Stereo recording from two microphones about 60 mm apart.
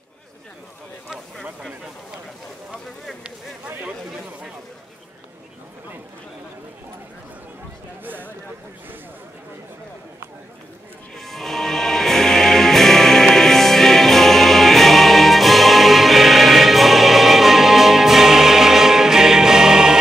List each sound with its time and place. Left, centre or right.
3.8 s chatter: centre
8.0 s a sound: right
11.1 s music: centre